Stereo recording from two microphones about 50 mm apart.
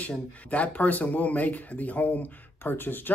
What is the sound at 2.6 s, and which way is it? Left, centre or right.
Speech, left.